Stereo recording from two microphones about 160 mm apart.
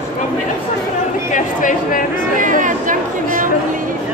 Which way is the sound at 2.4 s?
55° right (ahead or behind).